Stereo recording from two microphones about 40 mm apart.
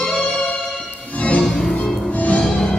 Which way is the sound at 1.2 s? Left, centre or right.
Left.